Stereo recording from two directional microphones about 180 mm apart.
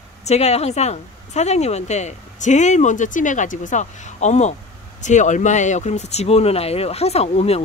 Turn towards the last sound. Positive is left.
turn(degrees=35)  # may be behind; listen again after turning